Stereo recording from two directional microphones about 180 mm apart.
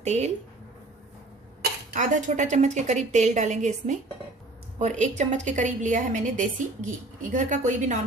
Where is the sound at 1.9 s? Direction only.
45° right (ahead or behind).